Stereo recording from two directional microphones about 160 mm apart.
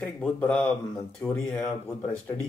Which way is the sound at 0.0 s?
5° left (ahead or behind).